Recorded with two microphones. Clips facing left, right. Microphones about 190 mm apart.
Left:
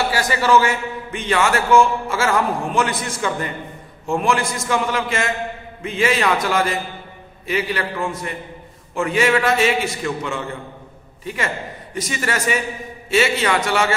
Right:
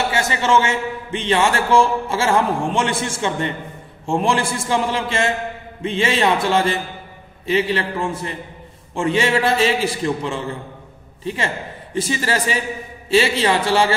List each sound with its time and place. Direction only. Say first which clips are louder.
0.1 s a man's voice: left 1 dB; 25° right (ahead or behind)